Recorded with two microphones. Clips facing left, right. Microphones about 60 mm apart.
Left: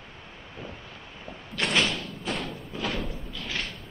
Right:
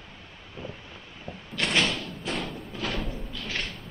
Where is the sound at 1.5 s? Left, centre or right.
Centre.